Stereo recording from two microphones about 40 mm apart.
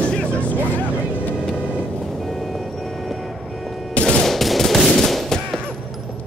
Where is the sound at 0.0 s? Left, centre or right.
Left.